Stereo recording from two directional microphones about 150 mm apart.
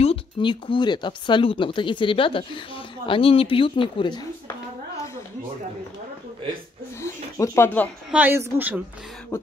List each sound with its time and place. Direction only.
0.0 s speech: 35° left (ahead or behind)
7.0 s a sound: 20° left (ahead or behind)
8.1 s a woman's voice: 10° right (ahead or behind)
9.3 s beatboxing: 15° left (ahead or behind)